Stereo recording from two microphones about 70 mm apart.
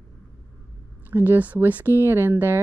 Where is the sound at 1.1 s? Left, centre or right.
Right.